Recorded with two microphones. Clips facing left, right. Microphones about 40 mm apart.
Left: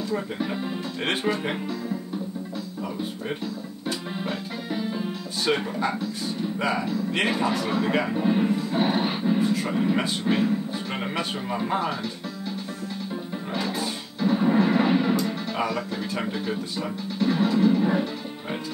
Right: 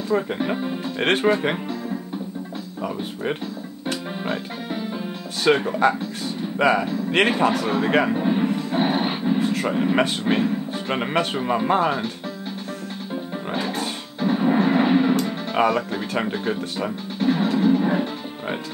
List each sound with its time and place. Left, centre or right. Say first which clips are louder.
0.1 s speech: right 9 dB; right
4.2 s music: right 3 dB; right
5.5 s speech: right 7 dB; right
8.1 s speech: right 2 dB; centre
8.5 s music: right 2 dB; right
9.4 s a sound: right 1 dB; right
9.7 s speech: right 4 dB; right
14.2 s artillery fire: right 2 dB; right
15.5 s music: right 11 dB; right